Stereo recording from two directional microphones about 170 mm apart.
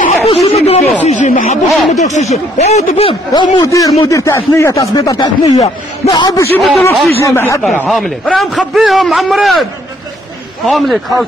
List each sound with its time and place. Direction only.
0.0 s chatter: 40° left (ahead or behind)
0.5 s speech: 35° left (ahead or behind)
3.6 s speech: 20° left (ahead or behind)
6.6 s a man's voice: centre (ahead or behind)
7.2 s speech: 15° left (ahead or behind)
7.8 s a man's voice: centre (ahead or behind)